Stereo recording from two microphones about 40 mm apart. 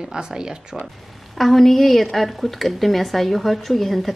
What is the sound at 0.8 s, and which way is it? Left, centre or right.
A woman's voice, centre.